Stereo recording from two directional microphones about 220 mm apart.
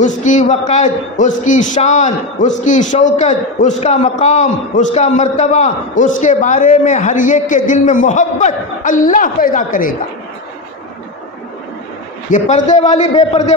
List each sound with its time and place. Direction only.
0.0 s a man's voice: 35° left (ahead or behind)
12.3 s a man's voice: 35° left (ahead or behind)